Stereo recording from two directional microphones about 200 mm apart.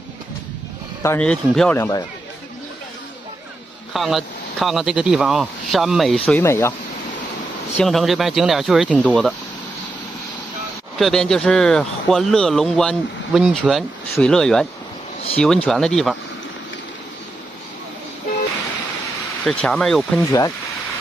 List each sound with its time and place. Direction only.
1.0 s a man's voice: 5° left (ahead or behind)
1.8 s speech: 20° left (ahead or behind)
3.9 s a man's voice: centre (ahead or behind)
7.8 s a man's voice: centre (ahead or behind)
11.0 s a man's voice: centre (ahead or behind)
19.4 s a man's voice: 5° left (ahead or behind)
20.2 s speech: 15° left (ahead or behind)